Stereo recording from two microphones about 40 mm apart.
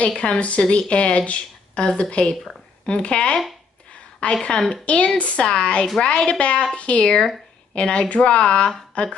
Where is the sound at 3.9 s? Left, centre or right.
Left.